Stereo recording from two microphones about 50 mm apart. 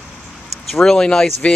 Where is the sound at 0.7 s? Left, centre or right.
Centre.